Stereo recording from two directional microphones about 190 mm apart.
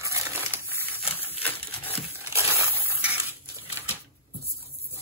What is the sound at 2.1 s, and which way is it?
Crumpling, 15° right (ahead or behind).